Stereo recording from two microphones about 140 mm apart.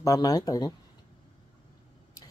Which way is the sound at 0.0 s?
25° left (ahead or behind).